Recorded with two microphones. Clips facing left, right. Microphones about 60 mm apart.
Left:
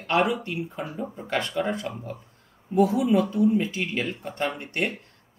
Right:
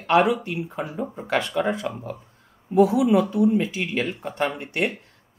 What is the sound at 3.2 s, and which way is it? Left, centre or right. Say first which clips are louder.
Speech: right 2 dB; centre.